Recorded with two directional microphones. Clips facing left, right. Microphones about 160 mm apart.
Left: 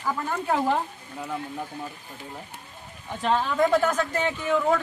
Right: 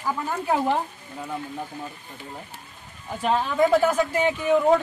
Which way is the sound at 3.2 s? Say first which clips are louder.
Right 1 dB; 5° right (ahead or behind).